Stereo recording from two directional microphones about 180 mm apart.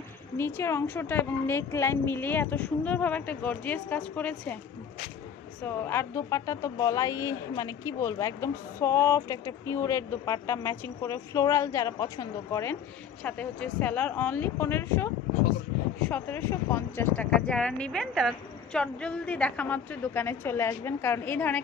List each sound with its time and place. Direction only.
0.4 s a woman's voice: 10° left (ahead or behind)
5.6 s a woman's voice: 15° left (ahead or behind)